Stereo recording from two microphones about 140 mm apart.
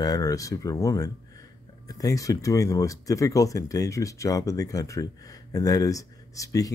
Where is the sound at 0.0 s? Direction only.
25° left (ahead or behind).